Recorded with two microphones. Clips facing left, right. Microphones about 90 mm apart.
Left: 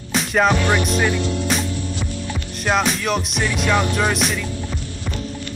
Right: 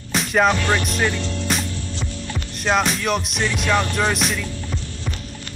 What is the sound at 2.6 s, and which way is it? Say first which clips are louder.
Music: even; centre (ahead or behind).